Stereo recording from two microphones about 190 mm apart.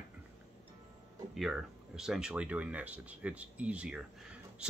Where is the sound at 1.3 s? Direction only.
Centre (ahead or behind).